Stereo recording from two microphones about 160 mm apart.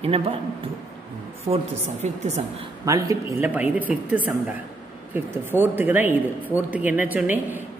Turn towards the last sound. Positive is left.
turn(degrees=-10)  # may be behind; listen again after turning